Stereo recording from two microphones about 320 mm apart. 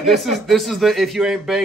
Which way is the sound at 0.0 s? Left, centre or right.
Centre.